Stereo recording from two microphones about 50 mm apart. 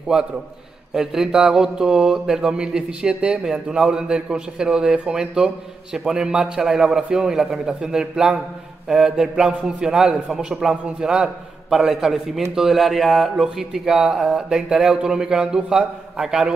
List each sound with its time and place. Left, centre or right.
0.1 s a man's voice: centre
11.7 s speech: centre